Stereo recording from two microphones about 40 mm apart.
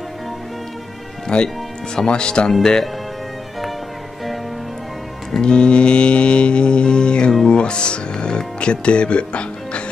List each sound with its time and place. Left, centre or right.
1.3 s speech: left
5.4 s speech: left